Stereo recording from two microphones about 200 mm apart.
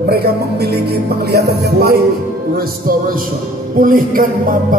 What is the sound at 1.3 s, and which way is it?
Music, 55° right (ahead or behind).